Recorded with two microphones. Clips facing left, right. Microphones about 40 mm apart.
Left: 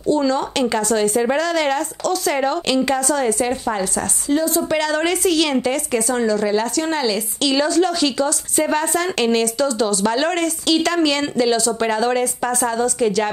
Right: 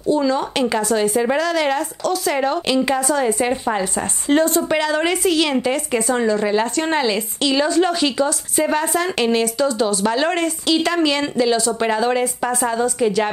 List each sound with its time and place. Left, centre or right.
0.1 s a woman's voice: centre
4.3 s speech: right
4.6 s a woman's voice: centre
5.9 s speech: right
7.4 s a woman's voice: centre